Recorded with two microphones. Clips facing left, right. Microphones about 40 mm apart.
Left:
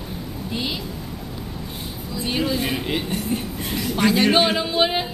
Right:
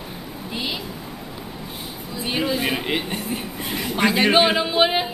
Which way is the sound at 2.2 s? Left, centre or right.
Centre.